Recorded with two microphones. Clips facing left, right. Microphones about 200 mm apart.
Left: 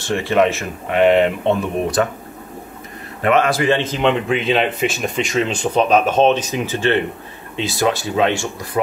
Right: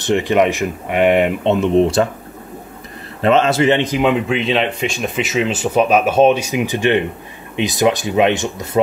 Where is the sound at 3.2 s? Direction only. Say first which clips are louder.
Right 3 dB; 25° right (ahead or behind).